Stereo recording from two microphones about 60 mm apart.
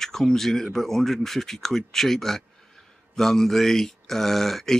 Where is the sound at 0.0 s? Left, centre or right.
Centre.